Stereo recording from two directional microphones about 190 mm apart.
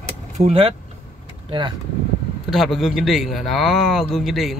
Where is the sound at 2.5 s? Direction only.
Centre (ahead or behind).